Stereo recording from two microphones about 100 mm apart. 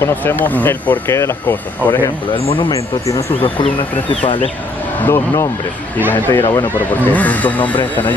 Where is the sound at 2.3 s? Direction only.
80° left.